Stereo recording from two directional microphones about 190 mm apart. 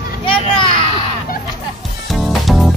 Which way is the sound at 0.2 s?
30° left (ahead or behind).